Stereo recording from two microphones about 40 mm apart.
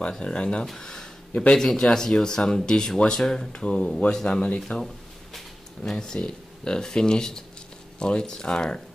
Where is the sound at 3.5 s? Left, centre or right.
Left.